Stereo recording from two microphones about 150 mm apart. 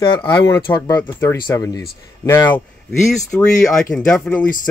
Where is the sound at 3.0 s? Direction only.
5° left (ahead or behind).